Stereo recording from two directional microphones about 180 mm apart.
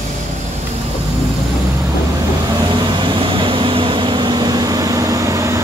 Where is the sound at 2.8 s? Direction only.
25° right (ahead or behind).